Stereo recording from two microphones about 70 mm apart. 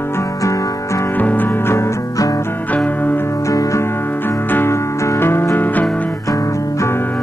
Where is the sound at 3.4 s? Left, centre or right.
Left.